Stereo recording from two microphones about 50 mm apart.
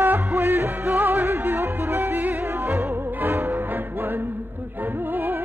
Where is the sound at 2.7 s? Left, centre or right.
Right.